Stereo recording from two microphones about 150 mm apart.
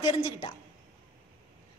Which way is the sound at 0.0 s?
30° left (ahead or behind).